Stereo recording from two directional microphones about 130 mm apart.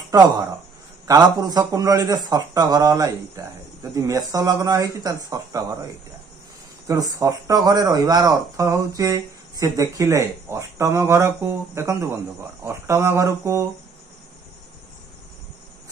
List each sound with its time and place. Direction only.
1.0 s speech: 30° right (ahead or behind)
7.2 s speech: 25° right (ahead or behind)